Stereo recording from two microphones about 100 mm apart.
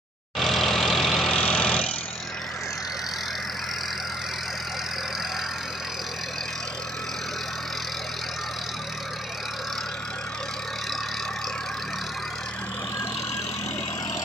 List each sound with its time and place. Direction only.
0.4 s vehicle: centre (ahead or behind)